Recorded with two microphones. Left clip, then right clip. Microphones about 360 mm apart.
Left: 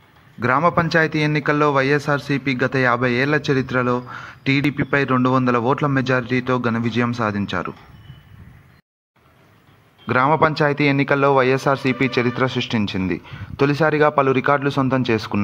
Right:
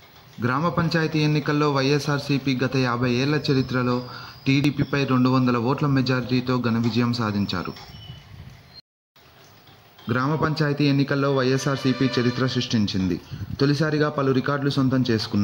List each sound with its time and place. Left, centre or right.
0.4 s speech: centre
10.0 s a man's voice: centre
10.3 s a man's voice: left